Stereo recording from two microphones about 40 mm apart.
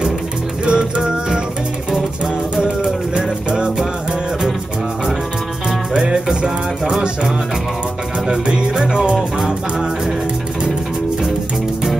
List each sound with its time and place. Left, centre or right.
0.7 s music: centre
2.5 s music: centre
5.9 s music: centre
8.3 s music: centre